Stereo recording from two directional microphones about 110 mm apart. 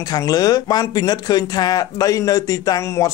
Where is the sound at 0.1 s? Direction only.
35° left (ahead or behind).